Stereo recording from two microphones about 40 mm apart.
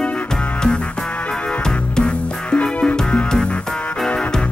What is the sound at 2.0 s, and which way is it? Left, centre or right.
Music, left.